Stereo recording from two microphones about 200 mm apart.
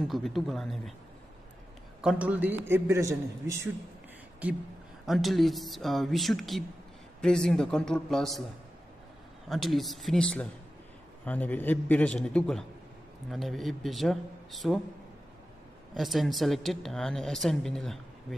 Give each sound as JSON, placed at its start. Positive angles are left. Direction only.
{"t": 0.1, "sound": "a woman's voice", "side_deg": 0}
{"t": 2.0, "sound": "a man's voice", "side_deg": -5}
{"t": 9.5, "sound": "a woman's voice", "side_deg": 0}
{"t": 16.0, "sound": "a woman's voice", "side_deg": 0}